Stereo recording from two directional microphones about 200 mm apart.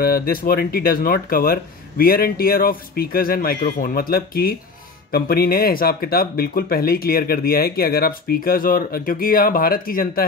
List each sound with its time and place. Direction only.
0.0 s speech: 50° left (ahead or behind)